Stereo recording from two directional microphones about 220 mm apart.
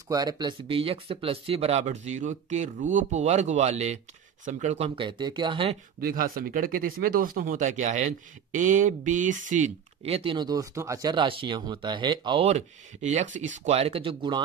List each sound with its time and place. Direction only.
0.1 s speech: 15° right (ahead or behind)
5.9 s speech: 40° right (ahead or behind); by 14.4 s 20° right (ahead or behind)